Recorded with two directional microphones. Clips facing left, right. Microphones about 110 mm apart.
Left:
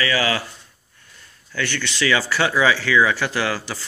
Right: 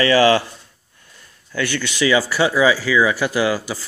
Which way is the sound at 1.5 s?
15° right (ahead or behind).